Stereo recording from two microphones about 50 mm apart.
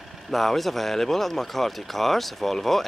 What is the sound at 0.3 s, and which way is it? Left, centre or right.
Speech, centre.